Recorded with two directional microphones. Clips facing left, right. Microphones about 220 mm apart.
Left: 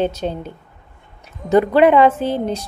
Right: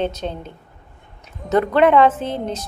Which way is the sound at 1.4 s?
10° left (ahead or behind).